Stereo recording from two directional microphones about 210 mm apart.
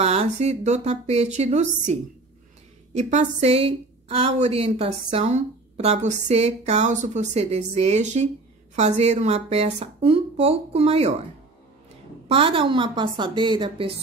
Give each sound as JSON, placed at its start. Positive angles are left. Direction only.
{"t": 0.0, "sound": "a woman's voice", "side_deg": -30}
{"t": 12.3, "sound": "a woman's voice", "side_deg": -25}